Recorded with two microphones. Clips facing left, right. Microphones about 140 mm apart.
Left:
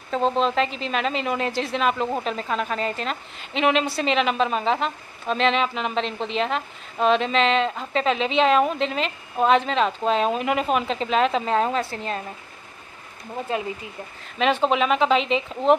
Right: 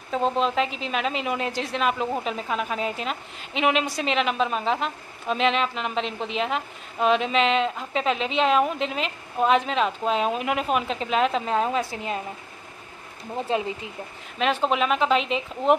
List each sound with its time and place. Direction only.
0.1 s a woman's voice: 5° right (ahead or behind)
13.5 s speech: 25° right (ahead or behind)
14.4 s a woman's voice: centre (ahead or behind)